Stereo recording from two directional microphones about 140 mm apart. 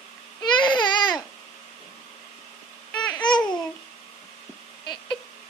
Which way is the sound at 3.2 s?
30° left (ahead or behind).